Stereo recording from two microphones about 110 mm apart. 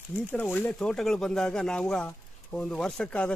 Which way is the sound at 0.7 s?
5° left (ahead or behind).